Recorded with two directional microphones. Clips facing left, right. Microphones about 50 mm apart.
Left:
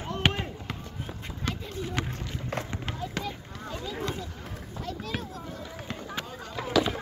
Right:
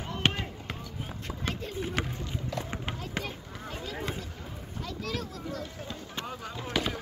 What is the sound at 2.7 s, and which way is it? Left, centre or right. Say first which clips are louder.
Run: left 1 dB; centre.